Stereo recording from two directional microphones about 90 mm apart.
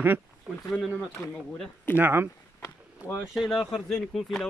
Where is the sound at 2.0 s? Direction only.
20° right (ahead or behind).